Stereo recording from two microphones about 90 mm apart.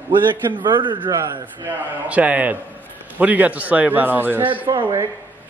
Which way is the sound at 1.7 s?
15° right (ahead or behind).